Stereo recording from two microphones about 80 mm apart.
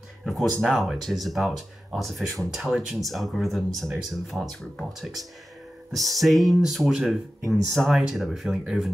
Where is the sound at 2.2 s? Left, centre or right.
Right.